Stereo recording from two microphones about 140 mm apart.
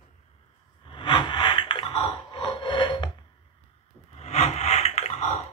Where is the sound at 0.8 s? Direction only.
40° left (ahead or behind).